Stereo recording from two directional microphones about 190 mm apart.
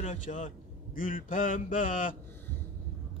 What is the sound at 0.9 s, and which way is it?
A man's voice, 45° left (ahead or behind).